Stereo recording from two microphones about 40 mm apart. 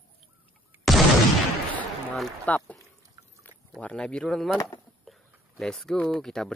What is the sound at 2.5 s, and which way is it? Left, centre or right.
Speech, left.